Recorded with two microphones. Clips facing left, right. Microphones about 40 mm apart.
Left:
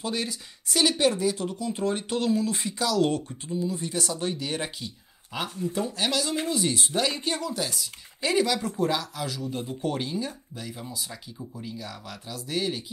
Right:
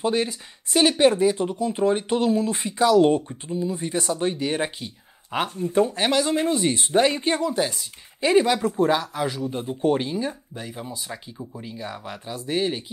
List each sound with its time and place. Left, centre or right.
0.0 s speech: right